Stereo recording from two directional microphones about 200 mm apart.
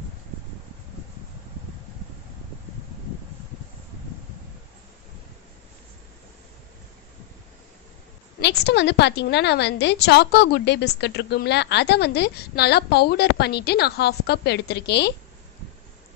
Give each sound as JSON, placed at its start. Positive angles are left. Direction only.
{"t": 8.4, "sound": "a woman's voice", "side_deg": 55}